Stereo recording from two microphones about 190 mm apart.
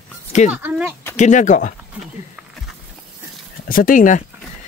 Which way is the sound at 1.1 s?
40° left (ahead or behind).